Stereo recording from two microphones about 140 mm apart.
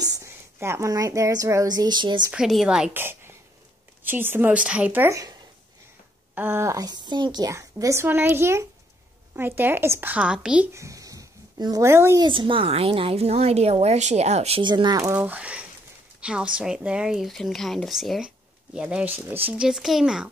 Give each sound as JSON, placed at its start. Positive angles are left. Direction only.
{"t": 0.0, "sound": "a woman's voice", "side_deg": -20}
{"t": 2.3, "sound": "speech", "side_deg": -5}
{"t": 6.3, "sound": "a woman's voice", "side_deg": -15}
{"t": 10.7, "sound": "speech", "side_deg": -20}
{"t": 12.2, "sound": "a woman's voice", "side_deg": -35}
{"t": 14.6, "sound": "speech", "side_deg": -30}
{"t": 15.1, "sound": "speech", "side_deg": -10}